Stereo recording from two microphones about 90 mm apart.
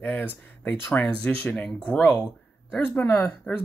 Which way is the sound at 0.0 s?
15° left (ahead or behind).